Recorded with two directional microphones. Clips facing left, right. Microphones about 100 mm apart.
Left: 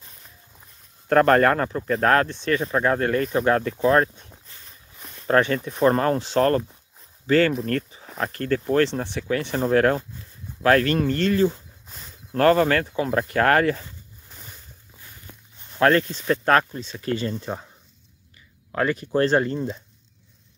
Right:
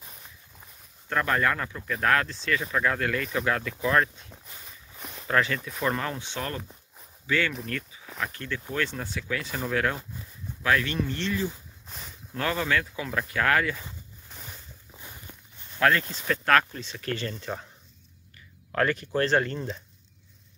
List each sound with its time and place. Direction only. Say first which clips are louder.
1.0 s speech: left 9 dB; 55° left (ahead or behind); by 4.3 s 30° left (ahead or behind)
4.5 s walk: right 2 dB; 10° right (ahead or behind)
5.3 s speech: left 6 dB; 30° left (ahead or behind)
14.3 s a sound: right 1 dB; 5° right (ahead or behind)
14.9 s walk: right 4 dB; 20° right (ahead or behind)
15.8 s speech: left 5 dB; 30° left (ahead or behind)
18.7 s speech: left 3 dB; 15° left (ahead or behind)